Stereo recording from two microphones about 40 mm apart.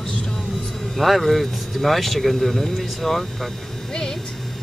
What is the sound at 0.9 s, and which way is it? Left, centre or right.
Speech, centre.